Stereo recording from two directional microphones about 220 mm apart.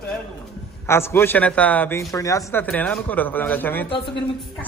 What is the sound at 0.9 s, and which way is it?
A man's voice, 10° left (ahead or behind).